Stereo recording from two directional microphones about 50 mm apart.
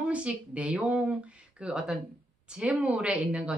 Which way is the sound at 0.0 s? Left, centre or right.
Right.